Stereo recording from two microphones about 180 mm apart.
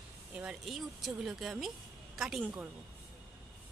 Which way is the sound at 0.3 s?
5° right (ahead or behind).